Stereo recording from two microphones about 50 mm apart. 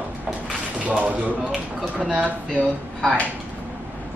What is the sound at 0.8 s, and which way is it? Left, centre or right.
A man's voice, right.